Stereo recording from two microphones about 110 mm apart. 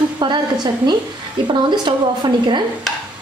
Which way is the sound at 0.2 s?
45° right (ahead or behind).